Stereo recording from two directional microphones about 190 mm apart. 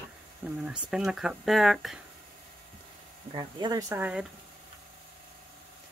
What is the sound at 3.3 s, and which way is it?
Speech, 20° right (ahead or behind).